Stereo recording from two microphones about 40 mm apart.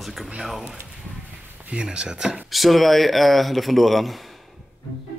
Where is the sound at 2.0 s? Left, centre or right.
Centre.